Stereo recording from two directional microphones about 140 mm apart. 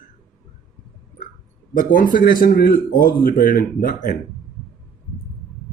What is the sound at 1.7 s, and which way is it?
Speech, 80° left.